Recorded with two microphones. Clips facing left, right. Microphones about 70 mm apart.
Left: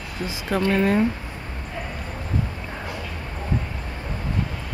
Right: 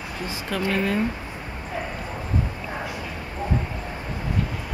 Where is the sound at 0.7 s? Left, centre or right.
Left.